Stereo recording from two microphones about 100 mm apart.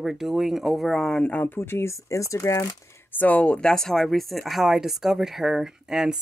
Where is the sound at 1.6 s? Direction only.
25° left (ahead or behind).